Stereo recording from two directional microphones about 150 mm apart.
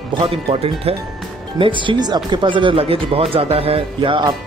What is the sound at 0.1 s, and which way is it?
Speech, 35° right (ahead or behind).